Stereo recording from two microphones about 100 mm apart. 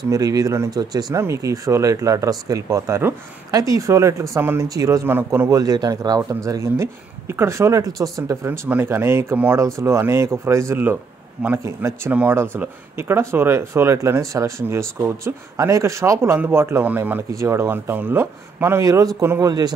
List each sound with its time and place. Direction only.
0.1 s speech: 40° right (ahead or behind)
5.0 s speech: 20° right (ahead or behind)
5.5 s speech: 40° right (ahead or behind)
8.5 s speech: 20° right (ahead or behind)
11.6 s speech: 30° right (ahead or behind)
12.1 s a man's voice: 15° right (ahead or behind)
17.3 s speech: 30° right (ahead or behind)